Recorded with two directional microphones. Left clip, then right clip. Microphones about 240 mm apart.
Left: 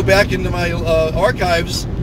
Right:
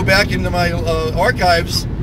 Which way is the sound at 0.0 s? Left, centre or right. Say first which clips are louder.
Left 1 dB; centre.